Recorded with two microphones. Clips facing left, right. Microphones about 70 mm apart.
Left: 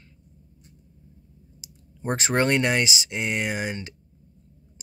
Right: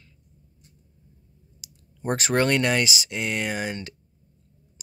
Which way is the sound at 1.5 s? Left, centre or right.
Left.